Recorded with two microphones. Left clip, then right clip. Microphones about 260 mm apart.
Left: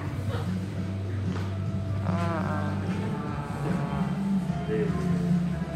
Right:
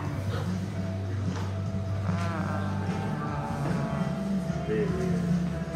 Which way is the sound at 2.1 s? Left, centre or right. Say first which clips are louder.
Left 4 dB; centre.